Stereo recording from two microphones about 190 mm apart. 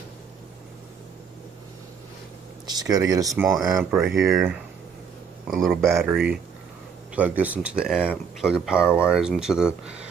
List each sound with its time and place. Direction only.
2.6 s speech: 20° right (ahead or behind)
3.5 s speech: centre (ahead or behind)
5.5 s speech: centre (ahead or behind)